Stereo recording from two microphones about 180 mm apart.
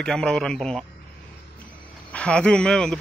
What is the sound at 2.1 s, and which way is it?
Speech, 5° left (ahead or behind).